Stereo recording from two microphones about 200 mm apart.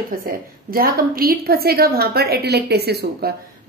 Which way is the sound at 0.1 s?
45° right (ahead or behind).